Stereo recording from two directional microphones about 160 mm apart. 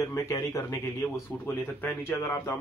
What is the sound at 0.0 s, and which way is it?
Speech, 20° left (ahead or behind).